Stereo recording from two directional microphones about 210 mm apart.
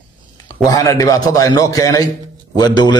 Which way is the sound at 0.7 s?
15° left (ahead or behind).